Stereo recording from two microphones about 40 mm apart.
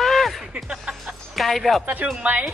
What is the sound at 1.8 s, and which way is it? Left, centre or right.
Speech, right.